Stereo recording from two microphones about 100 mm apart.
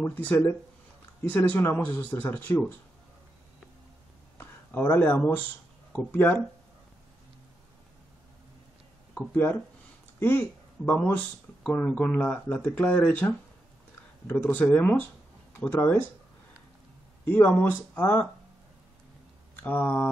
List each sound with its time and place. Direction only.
0.2 s speech: 15° left (ahead or behind)
4.4 s a sound: 20° left (ahead or behind)
5.9 s speech: 20° left (ahead or behind)
9.1 s speech: 20° left (ahead or behind)
17.2 s speech: 15° left (ahead or behind)
19.5 s speech: 15° left (ahead or behind)